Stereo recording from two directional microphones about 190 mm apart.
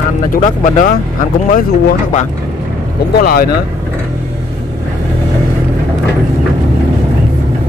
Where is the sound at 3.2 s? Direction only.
50° left (ahead or behind).